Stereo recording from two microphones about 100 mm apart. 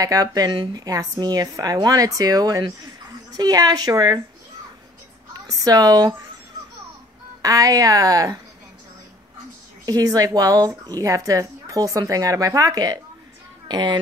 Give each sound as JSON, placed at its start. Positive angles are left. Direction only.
{"t": 0.0, "sound": "speech", "side_deg": -35}
{"t": 0.5, "sound": "a woman's voice", "side_deg": -55}
{"t": 0.8, "sound": "speech", "side_deg": -40}
{"t": 5.5, "sound": "speech", "side_deg": -40}
{"t": 7.4, "sound": "speech", "side_deg": -35}
{"t": 9.8, "sound": "a child's voice", "side_deg": -40}